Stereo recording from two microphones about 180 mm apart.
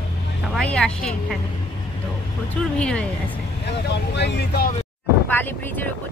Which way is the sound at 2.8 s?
5° left (ahead or behind).